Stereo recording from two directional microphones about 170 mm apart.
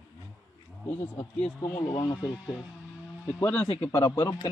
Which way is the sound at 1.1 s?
10° left (ahead or behind).